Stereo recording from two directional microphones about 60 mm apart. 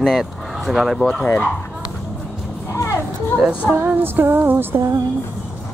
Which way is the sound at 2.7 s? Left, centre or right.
Left.